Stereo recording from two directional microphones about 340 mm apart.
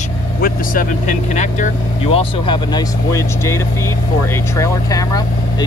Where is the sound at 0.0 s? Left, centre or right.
Left.